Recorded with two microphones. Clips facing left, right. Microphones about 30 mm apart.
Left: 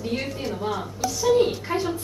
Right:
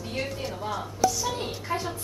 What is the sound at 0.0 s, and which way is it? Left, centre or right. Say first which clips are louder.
A woman's voice: left 4 dB; centre.